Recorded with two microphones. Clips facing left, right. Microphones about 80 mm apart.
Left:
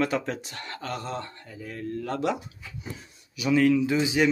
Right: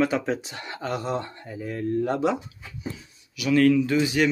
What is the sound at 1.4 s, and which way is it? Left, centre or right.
Speech, right.